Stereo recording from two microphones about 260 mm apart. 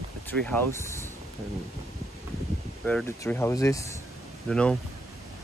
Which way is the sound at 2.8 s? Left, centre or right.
Centre.